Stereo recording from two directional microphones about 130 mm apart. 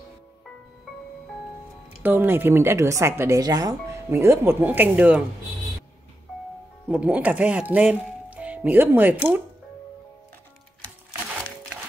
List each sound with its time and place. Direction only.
2.0 s speech: 15° right (ahead or behind)
6.9 s speech: 10° right (ahead or behind)